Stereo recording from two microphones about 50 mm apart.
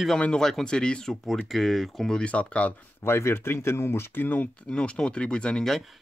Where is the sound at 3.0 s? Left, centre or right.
Left.